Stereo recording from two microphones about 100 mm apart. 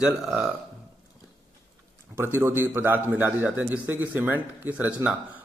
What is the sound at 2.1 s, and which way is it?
A man's voice, 25° right (ahead or behind).